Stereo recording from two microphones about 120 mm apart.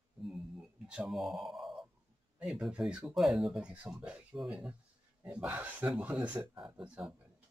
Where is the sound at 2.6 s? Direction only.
5° right (ahead or behind).